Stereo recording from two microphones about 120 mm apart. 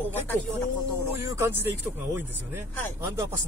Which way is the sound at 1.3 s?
25° right (ahead or behind).